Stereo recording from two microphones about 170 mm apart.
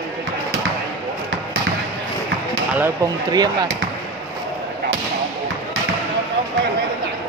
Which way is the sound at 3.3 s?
25° right (ahead or behind).